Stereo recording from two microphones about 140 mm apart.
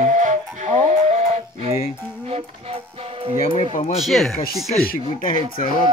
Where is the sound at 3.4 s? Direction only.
45° left (ahead or behind).